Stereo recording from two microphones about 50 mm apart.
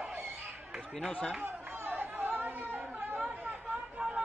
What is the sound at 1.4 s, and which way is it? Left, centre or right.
Chatter, right.